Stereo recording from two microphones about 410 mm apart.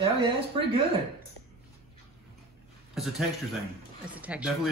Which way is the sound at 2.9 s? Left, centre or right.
Centre.